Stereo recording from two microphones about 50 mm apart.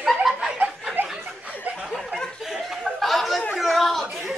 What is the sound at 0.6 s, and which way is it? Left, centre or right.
Chuckle, right.